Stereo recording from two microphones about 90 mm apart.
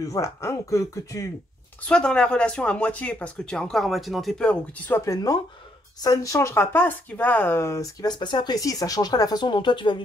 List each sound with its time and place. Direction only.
0.0 s speech: 35° left (ahead or behind)
1.9 s speech: 10° left (ahead or behind)
4.5 s speech: 20° left (ahead or behind)
5.0 s speech: 45° left (ahead or behind); by 7.7 s 25° left (ahead or behind)
7.7 s speech: 45° left (ahead or behind)
8.5 s speech: 40° left (ahead or behind); by 9.9 s 60° left (ahead or behind)